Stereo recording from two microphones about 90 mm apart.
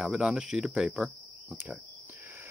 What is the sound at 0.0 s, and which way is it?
Speech, 10° right (ahead or behind).